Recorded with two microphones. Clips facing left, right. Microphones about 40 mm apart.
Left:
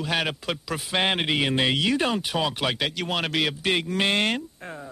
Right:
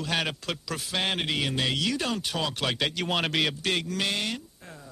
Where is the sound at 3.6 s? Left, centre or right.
Centre.